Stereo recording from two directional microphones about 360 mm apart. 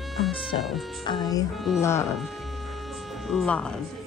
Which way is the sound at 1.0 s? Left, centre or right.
Centre.